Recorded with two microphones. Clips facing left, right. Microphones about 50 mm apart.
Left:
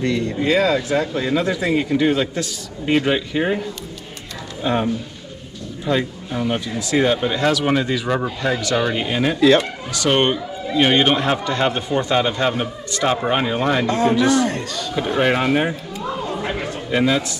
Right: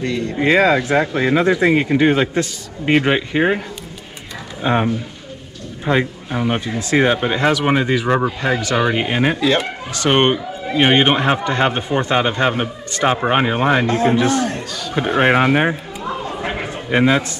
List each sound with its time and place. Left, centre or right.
0.4 s speech: right
16.3 s a sound: centre
16.9 s speech: right